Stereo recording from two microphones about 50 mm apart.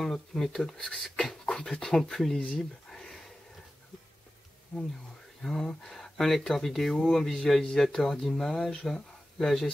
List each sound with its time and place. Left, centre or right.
0.0 s speech: centre
2.3 s speech: left
2.9 s a sound: centre
4.7 s speech: centre